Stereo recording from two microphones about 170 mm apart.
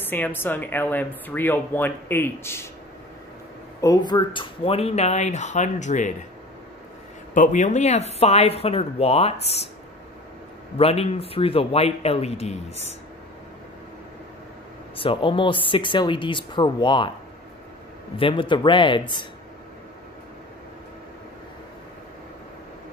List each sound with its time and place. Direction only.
0.0 s a woman's voice: 10° left (ahead or behind)
3.8 s speech: 25° left (ahead or behind); by 6.1 s 45° left (ahead or behind)
7.3 s speech: 50° left (ahead or behind)
10.8 s speech: 35° left (ahead or behind)
15.0 s speech: 30° left (ahead or behind)
18.1 s speech: 30° left (ahead or behind)